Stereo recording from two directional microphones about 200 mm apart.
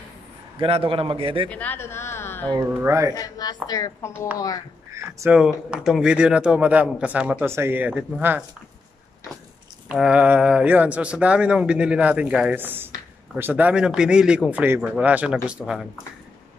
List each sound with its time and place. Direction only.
0.6 s a man's voice: 30° right (ahead or behind)
1.5 s a woman's voice: 10° left (ahead or behind)
2.5 s speech: 15° right (ahead or behind)
3.2 s a woman's voice: 20° left (ahead or behind)
4.9 s speech: 15° right (ahead or behind)
5.4 s speech: 5° right (ahead or behind)
9.8 s speech: 5° right (ahead or behind)